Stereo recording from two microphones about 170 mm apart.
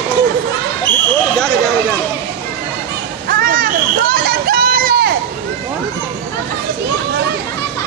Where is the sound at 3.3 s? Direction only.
55° right (ahead or behind).